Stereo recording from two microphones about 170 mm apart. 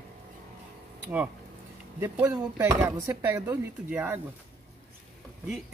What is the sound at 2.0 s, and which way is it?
Speech, 10° right (ahead or behind).